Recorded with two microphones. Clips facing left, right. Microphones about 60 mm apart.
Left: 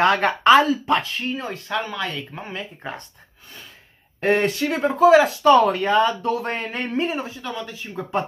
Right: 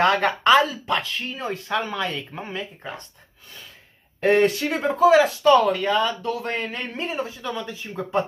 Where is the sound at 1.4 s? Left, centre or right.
Centre.